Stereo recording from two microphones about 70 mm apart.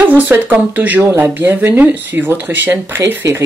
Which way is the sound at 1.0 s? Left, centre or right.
Right.